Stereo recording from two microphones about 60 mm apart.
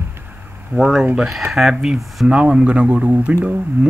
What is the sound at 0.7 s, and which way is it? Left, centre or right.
Speech, right.